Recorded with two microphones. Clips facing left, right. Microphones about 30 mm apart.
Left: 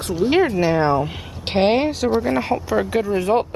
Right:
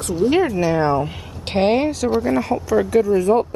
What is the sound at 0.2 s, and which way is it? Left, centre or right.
A woman's voice, left.